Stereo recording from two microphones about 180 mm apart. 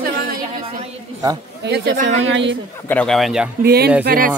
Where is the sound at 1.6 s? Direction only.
65° right (ahead or behind).